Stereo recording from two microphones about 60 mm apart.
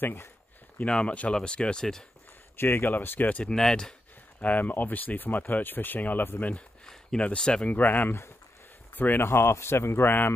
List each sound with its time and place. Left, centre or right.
0.0 s speech: left
0.7 s speech: centre
2.5 s speech: left
3.5 s speech: centre
4.4 s speech: left
6.5 s a sound: centre
7.2 s speech: centre
7.7 s speech: left
9.2 s speech: left